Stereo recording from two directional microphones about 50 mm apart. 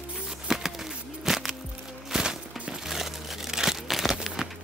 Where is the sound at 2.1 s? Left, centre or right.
Centre.